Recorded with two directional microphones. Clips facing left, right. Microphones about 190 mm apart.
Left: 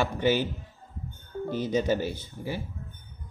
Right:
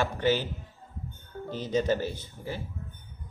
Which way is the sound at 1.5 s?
10° left (ahead or behind).